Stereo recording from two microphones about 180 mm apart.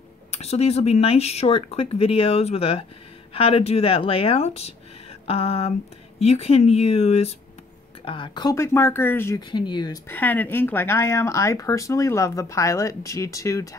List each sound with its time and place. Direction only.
0.3 s speech: 35° left (ahead or behind); by 9.4 s 15° left (ahead or behind)
9.5 s speech: 25° left (ahead or behind)
10.0 s speech: 10° left (ahead or behind)